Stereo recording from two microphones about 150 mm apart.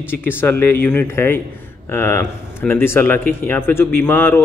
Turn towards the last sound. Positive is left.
turn(degrees=15)  # may be behind; listen again after turning